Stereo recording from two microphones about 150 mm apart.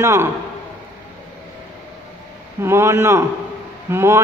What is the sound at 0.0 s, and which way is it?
Speech, 20° right (ahead or behind).